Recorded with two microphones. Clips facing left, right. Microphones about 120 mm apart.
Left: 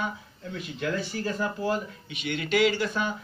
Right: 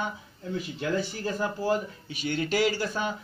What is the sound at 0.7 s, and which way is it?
Speech, 30° right (ahead or behind).